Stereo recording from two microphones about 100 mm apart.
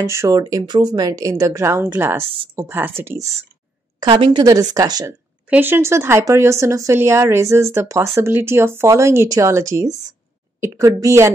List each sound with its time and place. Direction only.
0.0 s a woman's voice: 30° right (ahead or behind)
4.0 s speech: 50° right (ahead or behind)
5.5 s speech: 20° right (ahead or behind)